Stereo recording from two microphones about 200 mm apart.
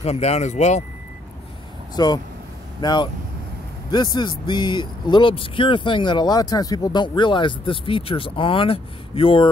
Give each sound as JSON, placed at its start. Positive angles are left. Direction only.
{"t": 0.0, "sound": "speech", "side_deg": 30}
{"t": 2.0, "sound": "speech", "side_deg": 20}